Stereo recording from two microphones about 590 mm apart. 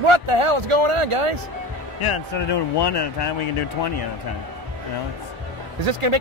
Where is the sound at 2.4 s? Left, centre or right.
Left.